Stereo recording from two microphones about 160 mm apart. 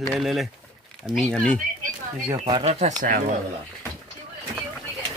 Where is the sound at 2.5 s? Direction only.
40° right (ahead or behind).